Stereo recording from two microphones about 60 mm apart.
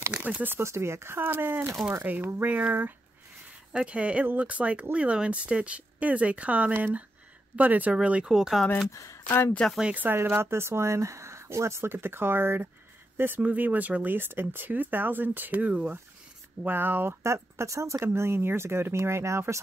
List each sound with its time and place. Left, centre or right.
0.1 s speech: right
0.5 s speech: right
3.7 s speech: centre
8.9 s speech: left
9.6 s speech: centre
9.9 s speech: right
13.4 s speech: right
17.2 s speech: right
18.0 s speech: right